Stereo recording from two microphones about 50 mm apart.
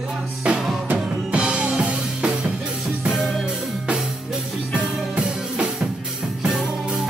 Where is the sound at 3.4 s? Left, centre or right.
Centre.